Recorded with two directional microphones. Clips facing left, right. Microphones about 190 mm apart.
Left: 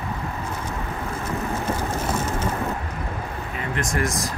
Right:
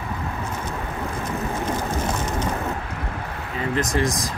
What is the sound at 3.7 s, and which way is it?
Speech, 35° right (ahead or behind).